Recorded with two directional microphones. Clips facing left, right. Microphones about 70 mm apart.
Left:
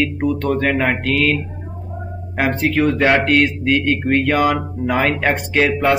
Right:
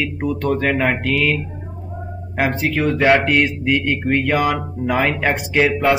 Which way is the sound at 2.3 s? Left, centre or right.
Centre.